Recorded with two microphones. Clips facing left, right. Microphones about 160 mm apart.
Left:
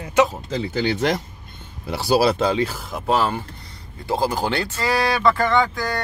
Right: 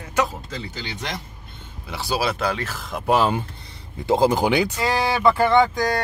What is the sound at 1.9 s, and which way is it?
Speech, 40° left (ahead or behind).